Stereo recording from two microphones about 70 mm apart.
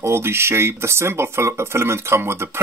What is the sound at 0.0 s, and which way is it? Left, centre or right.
Speech, right.